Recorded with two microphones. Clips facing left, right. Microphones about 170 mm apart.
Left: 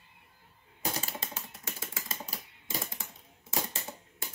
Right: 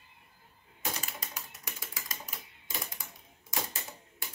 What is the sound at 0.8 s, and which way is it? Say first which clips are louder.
Typing: left 3 dB; 35° left (ahead or behind).